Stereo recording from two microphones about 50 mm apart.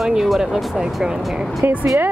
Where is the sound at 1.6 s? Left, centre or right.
Right.